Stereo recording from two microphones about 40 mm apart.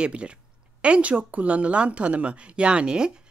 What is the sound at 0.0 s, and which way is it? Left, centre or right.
A woman's voice, right.